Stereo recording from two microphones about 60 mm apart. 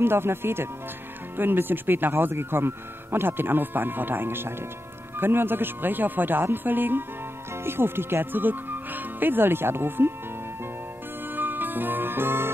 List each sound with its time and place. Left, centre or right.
0.0 s speech: right
11.3 s music: right